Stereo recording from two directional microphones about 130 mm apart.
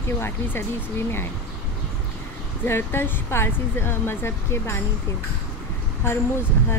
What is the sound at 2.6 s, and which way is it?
Speech, 15° left (ahead or behind).